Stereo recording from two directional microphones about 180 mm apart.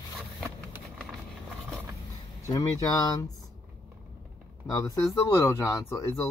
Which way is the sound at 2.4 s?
20° left (ahead or behind).